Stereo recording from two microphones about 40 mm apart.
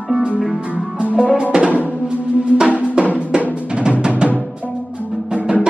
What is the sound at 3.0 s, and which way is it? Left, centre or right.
Drum, right.